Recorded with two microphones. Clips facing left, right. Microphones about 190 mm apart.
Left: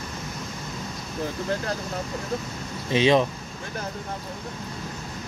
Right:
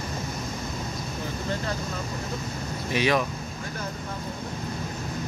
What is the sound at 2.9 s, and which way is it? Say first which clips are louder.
Speech: left 5 dB; 25° left (ahead or behind).